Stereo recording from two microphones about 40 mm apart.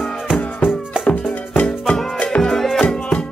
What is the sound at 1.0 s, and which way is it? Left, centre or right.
Music, left.